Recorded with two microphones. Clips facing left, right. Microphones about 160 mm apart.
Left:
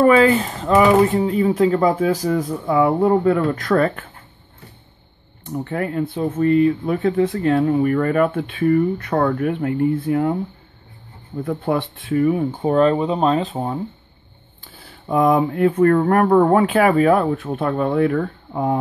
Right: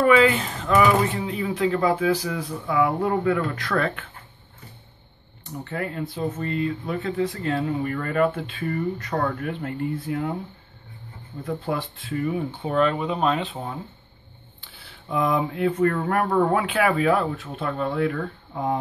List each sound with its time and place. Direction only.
0.0 s speech: 40° left (ahead or behind)
5.4 s speech: 50° left (ahead or behind)
11.4 s speech: 55° left (ahead or behind)